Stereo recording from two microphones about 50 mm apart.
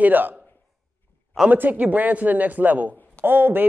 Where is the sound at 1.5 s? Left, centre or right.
Right.